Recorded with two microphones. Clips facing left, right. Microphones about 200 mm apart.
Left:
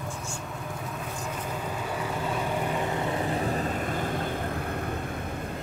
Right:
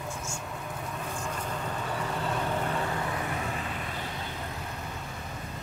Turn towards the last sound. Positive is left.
turn(degrees=50)  # may be behind; listen again after turning